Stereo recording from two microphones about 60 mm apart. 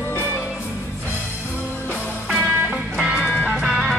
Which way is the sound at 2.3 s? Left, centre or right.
Centre.